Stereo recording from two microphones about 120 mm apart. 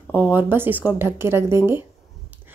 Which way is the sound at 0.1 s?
15° right (ahead or behind).